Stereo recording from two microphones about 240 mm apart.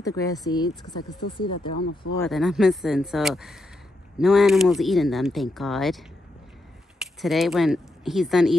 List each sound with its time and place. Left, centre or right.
0.0 s speech: centre
2.1 s speech: centre